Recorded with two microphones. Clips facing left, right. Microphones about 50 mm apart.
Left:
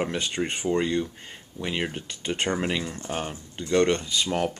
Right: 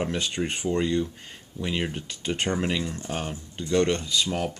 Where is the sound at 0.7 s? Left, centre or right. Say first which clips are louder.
Even; left.